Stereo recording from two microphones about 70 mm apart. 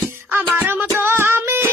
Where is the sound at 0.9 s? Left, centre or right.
Right.